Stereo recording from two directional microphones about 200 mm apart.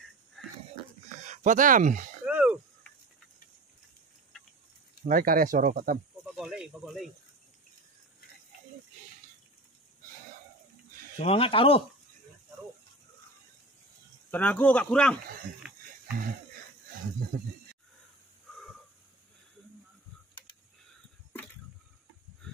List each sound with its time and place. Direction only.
1.2 s speech: 35° right (ahead or behind)
2.2 s a sound: 5° right (ahead or behind)
5.0 s speech: 45° right (ahead or behind)
6.3 s speech: 5° right (ahead or behind)
11.1 s speech: 30° left (ahead or behind)
14.3 s speech: 10° left (ahead or behind)